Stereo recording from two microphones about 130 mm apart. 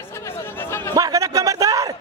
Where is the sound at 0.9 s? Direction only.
25° right (ahead or behind).